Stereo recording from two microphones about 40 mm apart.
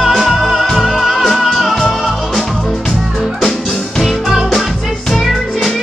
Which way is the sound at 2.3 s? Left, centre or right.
Centre.